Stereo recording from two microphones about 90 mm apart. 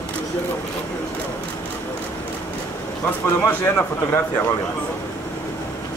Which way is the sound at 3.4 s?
25° left (ahead or behind).